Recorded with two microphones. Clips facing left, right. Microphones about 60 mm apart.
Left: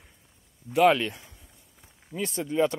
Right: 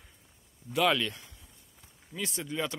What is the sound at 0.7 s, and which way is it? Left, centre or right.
Speech, left.